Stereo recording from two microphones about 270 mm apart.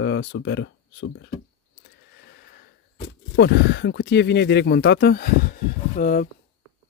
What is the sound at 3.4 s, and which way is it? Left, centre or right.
Speech, left.